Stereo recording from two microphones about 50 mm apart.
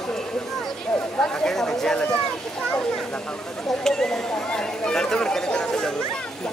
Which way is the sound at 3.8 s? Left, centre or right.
Centre.